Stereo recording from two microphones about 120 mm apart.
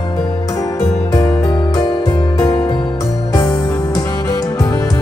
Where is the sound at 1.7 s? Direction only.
30° left (ahead or behind).